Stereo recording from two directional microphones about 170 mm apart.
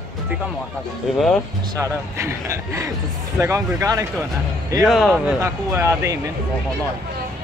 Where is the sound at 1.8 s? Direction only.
15° right (ahead or behind).